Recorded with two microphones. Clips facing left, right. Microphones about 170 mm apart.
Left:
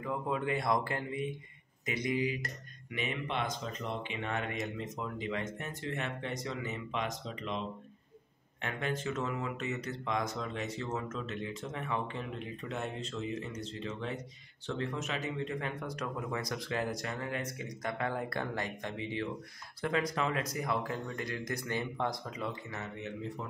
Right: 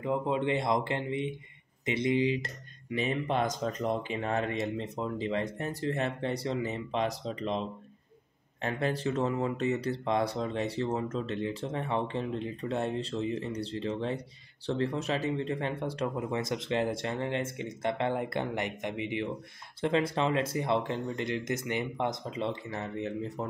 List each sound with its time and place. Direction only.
0.0 s speech: 25° right (ahead or behind)